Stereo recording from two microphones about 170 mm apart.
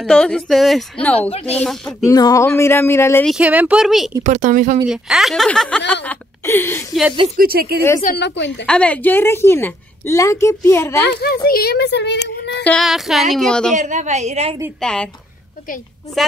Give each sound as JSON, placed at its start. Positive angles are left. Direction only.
{"t": 0.0, "sound": "speech", "side_deg": 5}
{"t": 2.0, "sound": "a woman's voice", "side_deg": 20}
{"t": 3.3, "sound": "speech", "side_deg": -5}
{"t": 4.3, "sound": "speech", "side_deg": -45}
{"t": 4.8, "sound": "speech", "side_deg": -5}
{"t": 7.3, "sound": "speech", "side_deg": -60}
{"t": 8.2, "sound": "a woman's voice", "side_deg": 90}
{"t": 8.6, "sound": "a woman's voice", "side_deg": 5}
{"t": 11.4, "sound": "speech", "side_deg": 65}
{"t": 12.6, "sound": "speech", "side_deg": 0}
{"t": 13.7, "sound": "a woman's voice", "side_deg": -45}
{"t": 14.8, "sound": "speech", "side_deg": 5}